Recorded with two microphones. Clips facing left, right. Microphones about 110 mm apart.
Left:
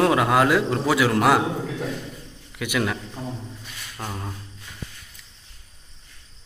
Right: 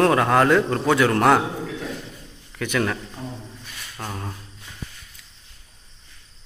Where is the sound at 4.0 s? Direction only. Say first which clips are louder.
Even; centre (ahead or behind).